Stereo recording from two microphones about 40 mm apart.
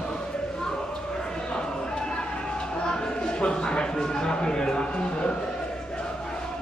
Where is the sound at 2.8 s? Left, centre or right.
Centre.